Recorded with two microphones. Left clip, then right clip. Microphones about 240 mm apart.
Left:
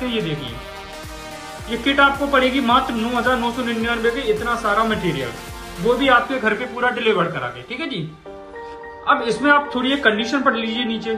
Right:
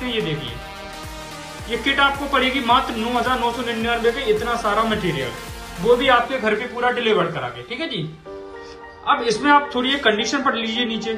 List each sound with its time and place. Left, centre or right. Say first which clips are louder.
0.0 s music: even; centre
1.7 s speech: left 2 dB; centre
9.0 s speech: left 1 dB; centre